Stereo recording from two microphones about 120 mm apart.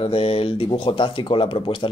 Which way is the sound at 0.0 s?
55° left (ahead or behind).